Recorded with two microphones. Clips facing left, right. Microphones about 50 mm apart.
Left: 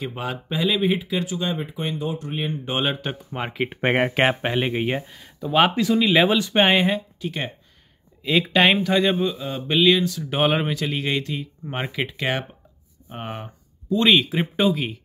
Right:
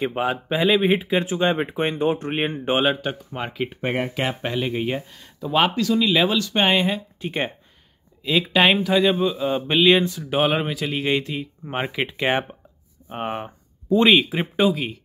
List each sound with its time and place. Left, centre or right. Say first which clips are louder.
0.0 s speech: right 6 dB; right
0.3 s speech: right 3 dB; centre
0.8 s speech: right 3 dB; right
2.8 s speech: right 4 dB; centre
3.8 s speech: left 5 dB; left
4.4 s speech: left 1 dB; left; by 5.7 s centre
5.8 s speech: left 1 dB; centre
6.6 s speech: left 1 dB; centre
7.2 s speech: right 3 dB; right
8.2 s speech: even; centre
9.3 s speech: right 3 dB; centre
10.2 s speech: even; centre